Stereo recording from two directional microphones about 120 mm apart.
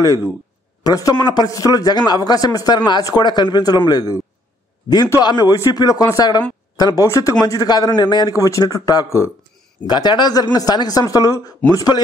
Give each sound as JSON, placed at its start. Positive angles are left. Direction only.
{"t": 0.8, "sound": "speech", "side_deg": 30}
{"t": 9.8, "sound": "speech", "side_deg": 35}